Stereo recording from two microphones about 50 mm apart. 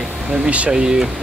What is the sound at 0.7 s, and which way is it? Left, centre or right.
Speech, centre.